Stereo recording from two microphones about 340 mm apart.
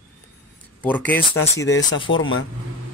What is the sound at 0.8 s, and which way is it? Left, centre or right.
Speech, centre.